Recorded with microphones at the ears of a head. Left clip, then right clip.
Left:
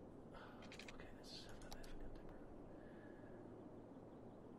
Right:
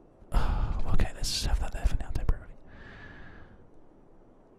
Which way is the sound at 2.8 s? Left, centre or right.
Right.